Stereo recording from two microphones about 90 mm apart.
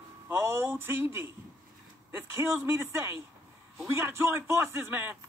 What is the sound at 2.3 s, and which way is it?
A man's voice, 30° right (ahead or behind).